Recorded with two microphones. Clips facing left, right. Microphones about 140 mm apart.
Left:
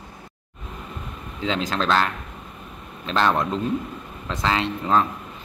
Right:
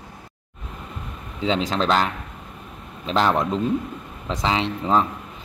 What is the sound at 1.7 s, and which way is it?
Speech, 15° right (ahead or behind).